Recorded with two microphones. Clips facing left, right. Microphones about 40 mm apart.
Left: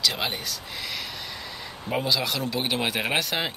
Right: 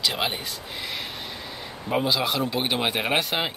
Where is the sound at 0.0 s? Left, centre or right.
Centre.